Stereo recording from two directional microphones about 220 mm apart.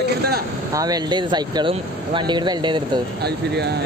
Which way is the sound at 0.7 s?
20° right (ahead or behind).